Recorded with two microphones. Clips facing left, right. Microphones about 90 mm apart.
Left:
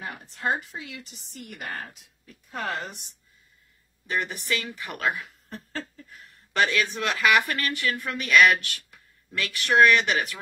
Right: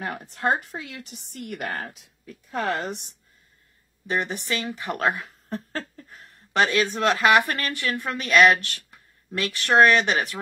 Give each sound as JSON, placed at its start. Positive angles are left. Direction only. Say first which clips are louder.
{"t": 0.0, "sound": "a woman's voice", "louder": "right 4 dB", "side_deg": -55}
{"t": 4.1, "sound": "speech", "louder": "right 2 dB", "side_deg": -25}